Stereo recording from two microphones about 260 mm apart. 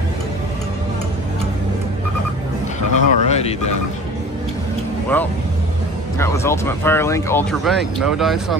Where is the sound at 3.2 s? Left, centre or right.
Left.